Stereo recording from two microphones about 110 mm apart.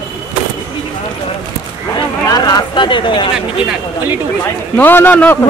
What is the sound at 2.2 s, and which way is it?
Speech, 35° left (ahead or behind).